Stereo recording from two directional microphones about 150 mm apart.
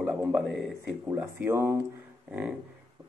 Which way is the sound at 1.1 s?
15° right (ahead or behind).